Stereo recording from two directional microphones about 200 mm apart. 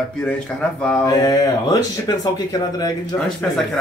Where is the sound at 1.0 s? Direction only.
20° left (ahead or behind).